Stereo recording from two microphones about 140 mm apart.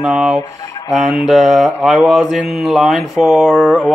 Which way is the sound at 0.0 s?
5° right (ahead or behind).